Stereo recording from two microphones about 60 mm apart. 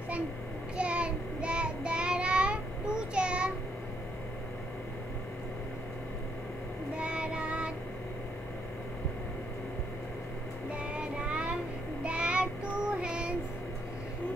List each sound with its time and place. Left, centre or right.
0.7 s child singing: centre
7.0 s child singing: centre
10.7 s child singing: centre